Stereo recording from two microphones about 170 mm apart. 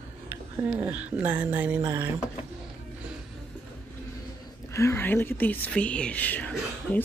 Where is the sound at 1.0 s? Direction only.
10° right (ahead or behind).